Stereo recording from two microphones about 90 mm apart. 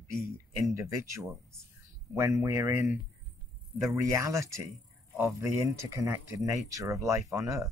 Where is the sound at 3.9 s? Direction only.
35° right (ahead or behind).